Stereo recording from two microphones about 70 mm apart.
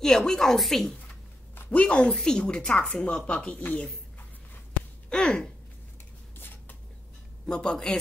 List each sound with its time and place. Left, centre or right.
0.0 s a woman's voice: centre
1.7 s a woman's voice: centre
5.1 s a woman's voice: centre
6.3 s a sound: left
7.4 s a woman's voice: centre